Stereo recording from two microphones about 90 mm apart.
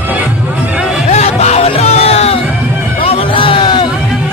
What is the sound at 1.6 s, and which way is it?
Music, 90° left.